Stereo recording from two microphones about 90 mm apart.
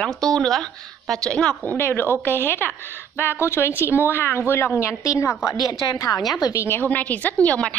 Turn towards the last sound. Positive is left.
turn(degrees=15)  # may be behind; listen again after turning